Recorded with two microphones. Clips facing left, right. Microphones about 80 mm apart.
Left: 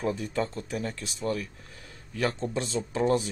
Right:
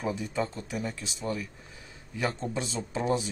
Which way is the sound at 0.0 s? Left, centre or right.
Centre.